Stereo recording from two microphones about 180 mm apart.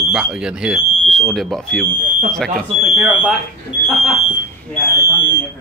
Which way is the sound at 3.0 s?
5° right (ahead or behind).